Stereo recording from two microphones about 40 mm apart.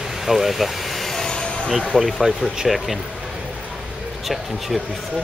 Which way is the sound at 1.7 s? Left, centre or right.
Centre.